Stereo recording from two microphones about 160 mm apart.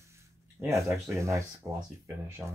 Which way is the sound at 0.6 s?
20° right (ahead or behind).